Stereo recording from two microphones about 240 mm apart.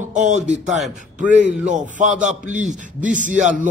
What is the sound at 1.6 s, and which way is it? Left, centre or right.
A man's voice, right.